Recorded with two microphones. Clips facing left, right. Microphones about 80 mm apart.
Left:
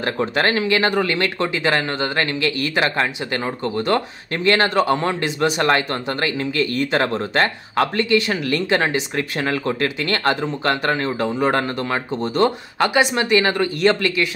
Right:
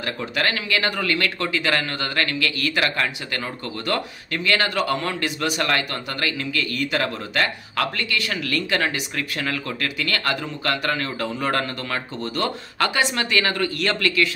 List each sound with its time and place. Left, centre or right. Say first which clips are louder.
0.0 s a man's voice: left 5 dB; left